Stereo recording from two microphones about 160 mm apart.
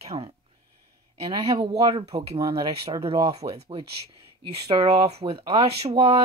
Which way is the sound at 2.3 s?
20° right (ahead or behind).